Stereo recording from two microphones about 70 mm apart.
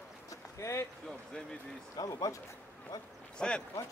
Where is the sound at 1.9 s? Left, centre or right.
Left.